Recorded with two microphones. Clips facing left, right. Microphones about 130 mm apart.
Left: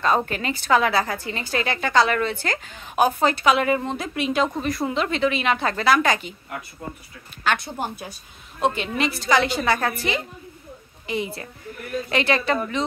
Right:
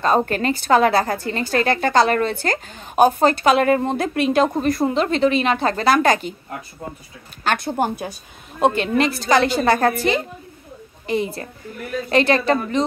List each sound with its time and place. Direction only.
0.0 s a woman's voice: 35° right (ahead or behind)
7.4 s a woman's voice: 45° right (ahead or behind)